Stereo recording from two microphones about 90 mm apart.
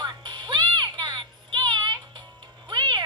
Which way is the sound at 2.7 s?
60° right (ahead or behind).